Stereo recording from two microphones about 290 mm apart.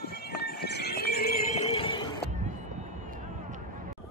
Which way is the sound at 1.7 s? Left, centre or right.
Centre.